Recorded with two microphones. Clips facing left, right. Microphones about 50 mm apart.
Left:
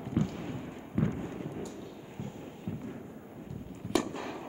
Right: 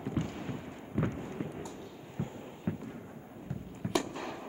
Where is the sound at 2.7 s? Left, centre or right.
Right.